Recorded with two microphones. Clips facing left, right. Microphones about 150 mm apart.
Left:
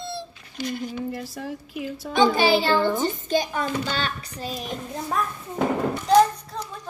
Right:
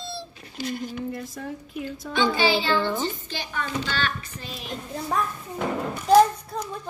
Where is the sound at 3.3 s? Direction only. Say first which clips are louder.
Left 7 dB; 40° left (ahead or behind).